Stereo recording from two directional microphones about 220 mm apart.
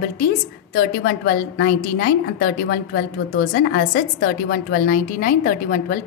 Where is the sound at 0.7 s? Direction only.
45° left (ahead or behind).